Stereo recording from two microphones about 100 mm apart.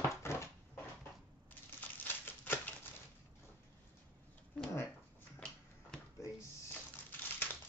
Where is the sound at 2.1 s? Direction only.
20° left (ahead or behind).